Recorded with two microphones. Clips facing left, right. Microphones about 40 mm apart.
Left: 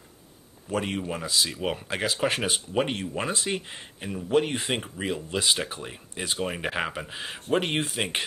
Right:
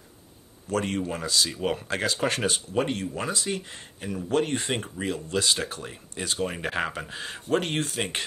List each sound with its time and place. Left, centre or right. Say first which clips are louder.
0.7 s speech: right 1 dB; centre
2.9 s speech: even; left; by 8.3 s centre